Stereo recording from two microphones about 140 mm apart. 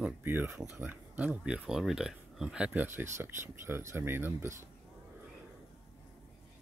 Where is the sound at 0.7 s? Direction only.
10° right (ahead or behind).